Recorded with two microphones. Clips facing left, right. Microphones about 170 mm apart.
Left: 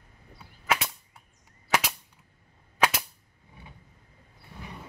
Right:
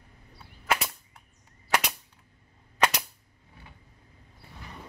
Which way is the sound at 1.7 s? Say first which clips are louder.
Even; centre (ahead or behind).